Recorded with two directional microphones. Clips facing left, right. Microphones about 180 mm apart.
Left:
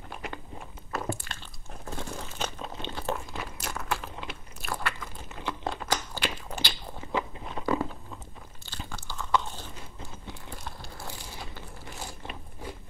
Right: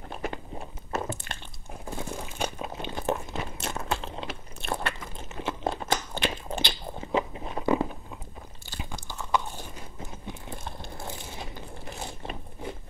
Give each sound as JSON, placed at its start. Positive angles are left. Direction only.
{"t": 0.9, "sound": "biting", "side_deg": -20}
{"t": 1.9, "sound": "a sound", "side_deg": -10}
{"t": 4.6, "sound": "biting", "side_deg": -25}